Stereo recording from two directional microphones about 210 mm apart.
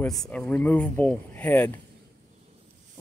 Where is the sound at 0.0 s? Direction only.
5° left (ahead or behind).